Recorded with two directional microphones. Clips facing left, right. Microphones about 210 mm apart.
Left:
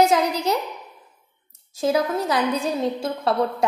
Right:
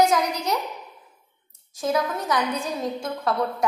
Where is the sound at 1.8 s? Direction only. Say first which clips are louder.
Left 4 dB; 30° left (ahead or behind).